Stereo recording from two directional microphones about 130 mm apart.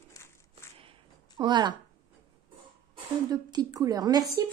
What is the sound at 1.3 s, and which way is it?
Speech, 35° right (ahead or behind).